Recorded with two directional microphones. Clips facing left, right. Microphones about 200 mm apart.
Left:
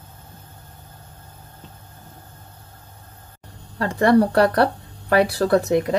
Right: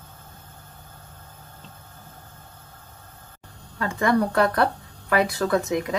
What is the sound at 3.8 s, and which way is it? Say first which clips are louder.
Speech: left 6 dB; 35° left (ahead or behind).